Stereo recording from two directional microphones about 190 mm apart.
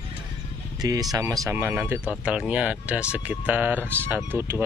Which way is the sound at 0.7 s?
20° right (ahead or behind).